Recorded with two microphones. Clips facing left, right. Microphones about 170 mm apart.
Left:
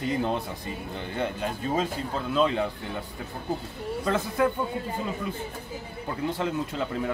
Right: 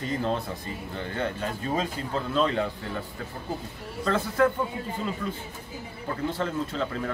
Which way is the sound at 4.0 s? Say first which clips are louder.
Right 2 dB; 15° left (ahead or behind).